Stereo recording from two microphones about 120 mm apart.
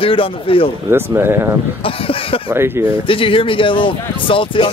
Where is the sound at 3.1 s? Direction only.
45° left (ahead or behind).